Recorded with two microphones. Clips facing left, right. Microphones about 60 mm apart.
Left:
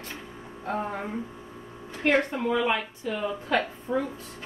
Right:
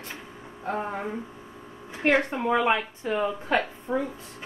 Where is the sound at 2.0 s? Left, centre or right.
Right.